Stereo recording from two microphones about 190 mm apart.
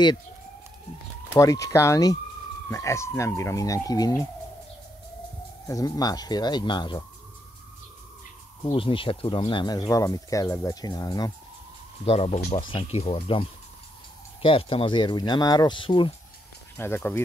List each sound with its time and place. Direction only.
1.3 s speech: 15° left (ahead or behind)
5.7 s speech: 20° left (ahead or behind)
8.6 s speech: 30° left (ahead or behind)
12.0 s speech: 35° left (ahead or behind)
16.7 s speech: 10° left (ahead or behind)